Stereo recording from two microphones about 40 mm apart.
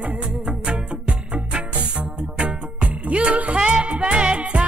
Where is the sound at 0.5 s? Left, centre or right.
Right.